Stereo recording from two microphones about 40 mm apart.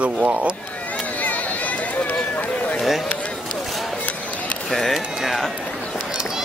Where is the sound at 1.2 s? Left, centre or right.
Left.